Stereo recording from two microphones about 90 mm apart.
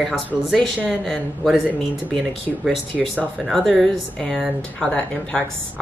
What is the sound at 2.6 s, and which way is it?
Speech, centre (ahead or behind).